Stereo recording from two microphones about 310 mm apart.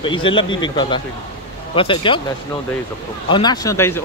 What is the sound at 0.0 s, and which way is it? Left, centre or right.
Speech, centre.